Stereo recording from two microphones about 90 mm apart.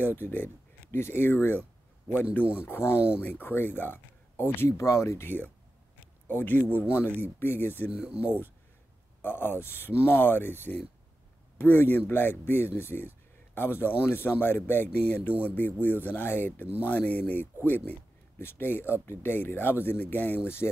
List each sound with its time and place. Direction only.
0.0 s speech: 25° left (ahead or behind)
7.9 s speech: 10° right (ahead or behind)
9.2 s speech: 25° left (ahead or behind)